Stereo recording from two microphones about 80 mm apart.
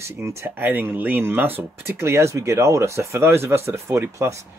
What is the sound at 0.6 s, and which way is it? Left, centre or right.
Speech, right.